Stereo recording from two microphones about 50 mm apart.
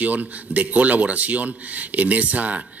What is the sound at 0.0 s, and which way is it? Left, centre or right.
Speech, right.